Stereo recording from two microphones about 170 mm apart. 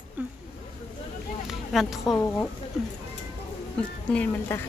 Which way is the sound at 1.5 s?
Centre (ahead or behind).